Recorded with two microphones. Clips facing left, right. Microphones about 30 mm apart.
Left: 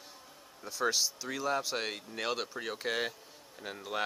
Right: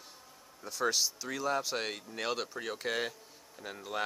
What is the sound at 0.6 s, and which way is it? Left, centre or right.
Speech, centre.